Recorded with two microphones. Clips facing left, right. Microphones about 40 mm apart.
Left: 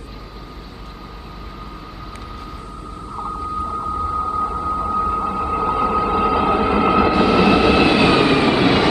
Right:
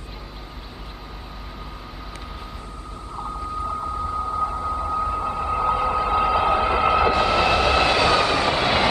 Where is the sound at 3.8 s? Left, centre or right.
Centre.